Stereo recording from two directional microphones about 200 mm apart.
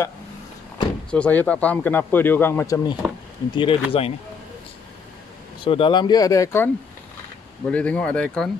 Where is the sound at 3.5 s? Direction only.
25° left (ahead or behind).